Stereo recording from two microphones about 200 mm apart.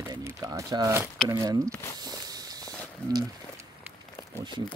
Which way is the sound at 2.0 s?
20° right (ahead or behind).